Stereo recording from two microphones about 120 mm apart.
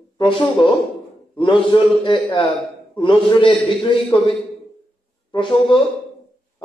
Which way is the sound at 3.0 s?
45° left (ahead or behind).